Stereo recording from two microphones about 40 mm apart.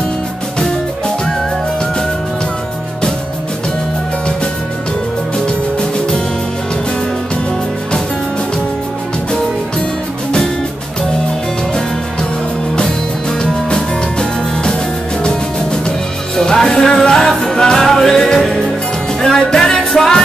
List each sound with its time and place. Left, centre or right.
5.8 s music: centre
13.4 s music: left
16.3 s music: centre